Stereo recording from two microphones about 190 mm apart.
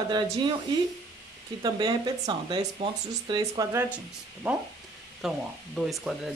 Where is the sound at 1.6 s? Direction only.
25° right (ahead or behind).